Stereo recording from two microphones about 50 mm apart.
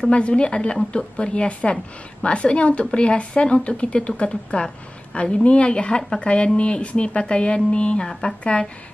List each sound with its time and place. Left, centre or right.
0.0 s speech: left